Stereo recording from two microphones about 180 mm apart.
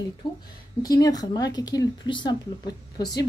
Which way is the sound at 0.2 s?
25° left (ahead or behind).